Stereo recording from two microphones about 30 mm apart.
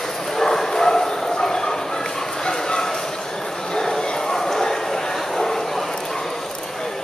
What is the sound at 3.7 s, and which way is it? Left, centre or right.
Bow-wow, centre.